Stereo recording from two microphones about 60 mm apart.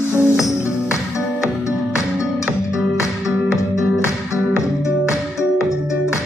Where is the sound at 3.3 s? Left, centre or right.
Centre.